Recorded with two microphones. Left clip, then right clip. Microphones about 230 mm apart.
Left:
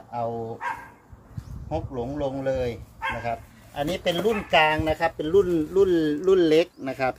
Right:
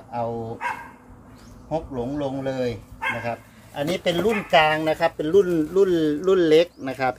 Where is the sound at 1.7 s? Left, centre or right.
Centre.